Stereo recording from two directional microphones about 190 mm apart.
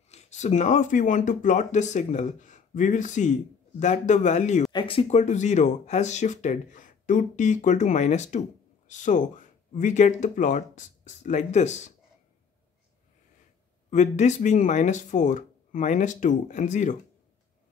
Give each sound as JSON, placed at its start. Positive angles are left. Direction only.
{"t": 0.1, "sound": "speech", "side_deg": 35}
{"t": 13.8, "sound": "speech", "side_deg": 40}